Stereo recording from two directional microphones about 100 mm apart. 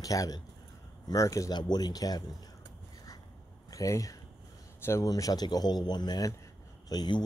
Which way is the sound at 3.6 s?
35° left (ahead or behind).